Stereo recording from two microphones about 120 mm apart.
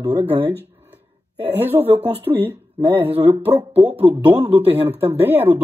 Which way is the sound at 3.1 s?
50° right (ahead or behind).